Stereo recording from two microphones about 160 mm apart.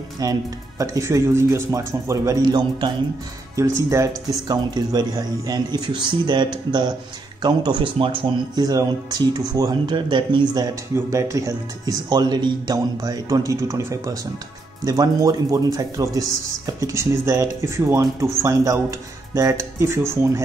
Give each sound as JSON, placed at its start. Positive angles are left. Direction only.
{"t": 0.2, "sound": "speech", "side_deg": -20}